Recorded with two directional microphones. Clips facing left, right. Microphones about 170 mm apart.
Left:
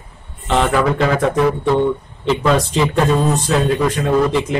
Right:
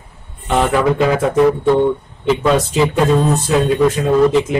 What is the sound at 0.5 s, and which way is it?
Speech, 10° right (ahead or behind).